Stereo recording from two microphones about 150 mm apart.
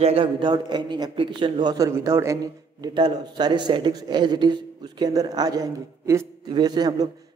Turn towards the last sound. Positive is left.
turn(degrees=-30)  # may be behind; listen again after turning